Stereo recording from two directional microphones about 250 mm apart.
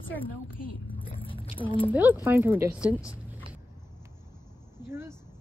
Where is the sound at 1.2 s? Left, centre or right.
Left.